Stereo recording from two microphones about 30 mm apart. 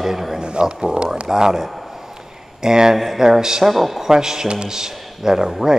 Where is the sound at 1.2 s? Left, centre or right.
Centre.